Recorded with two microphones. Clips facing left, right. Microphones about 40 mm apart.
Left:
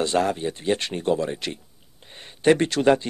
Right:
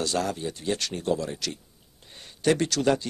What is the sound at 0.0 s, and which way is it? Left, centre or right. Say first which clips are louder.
Speech: left 5 dB; left.